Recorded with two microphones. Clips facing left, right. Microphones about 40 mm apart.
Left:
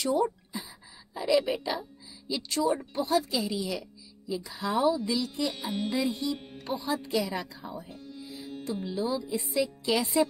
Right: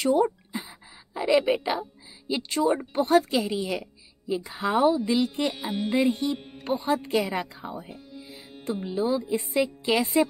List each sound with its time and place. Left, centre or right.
0.0 s a sound: right
1.1 s a woman's voice: right
5.5 s speech: centre
5.9 s a woman's voice: right
7.9 s music: centre
8.8 s a woman's voice: right
9.8 s a woman's voice: right